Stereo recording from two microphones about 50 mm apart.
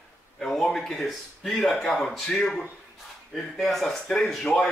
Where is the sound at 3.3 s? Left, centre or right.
Centre.